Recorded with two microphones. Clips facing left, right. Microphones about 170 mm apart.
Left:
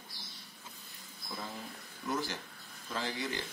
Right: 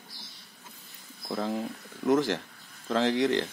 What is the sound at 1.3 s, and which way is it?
Speech, 75° right (ahead or behind).